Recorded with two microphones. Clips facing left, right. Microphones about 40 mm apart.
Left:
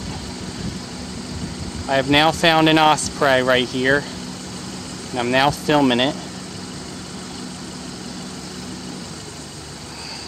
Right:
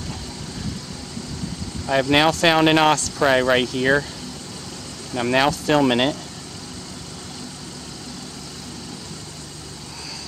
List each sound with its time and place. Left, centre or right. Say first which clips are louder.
1.9 s speech: left 1 dB; centre
5.1 s speech: left 1 dB; centre